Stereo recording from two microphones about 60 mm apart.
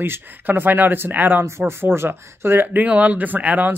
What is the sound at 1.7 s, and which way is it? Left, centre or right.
Speech, right.